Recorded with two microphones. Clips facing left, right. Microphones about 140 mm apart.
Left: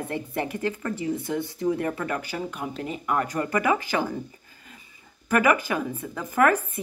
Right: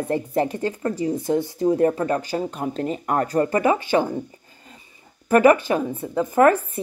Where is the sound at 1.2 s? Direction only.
25° right (ahead or behind).